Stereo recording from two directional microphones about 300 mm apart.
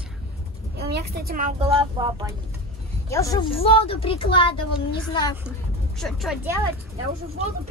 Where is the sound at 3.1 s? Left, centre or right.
Centre.